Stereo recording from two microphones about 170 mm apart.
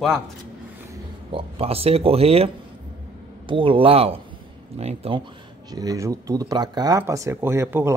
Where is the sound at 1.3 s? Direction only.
30° right (ahead or behind).